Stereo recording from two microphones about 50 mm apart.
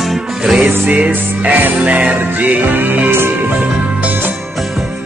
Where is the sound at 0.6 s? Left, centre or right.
Right.